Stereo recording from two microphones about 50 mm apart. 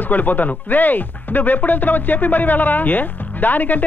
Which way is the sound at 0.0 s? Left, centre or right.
Left.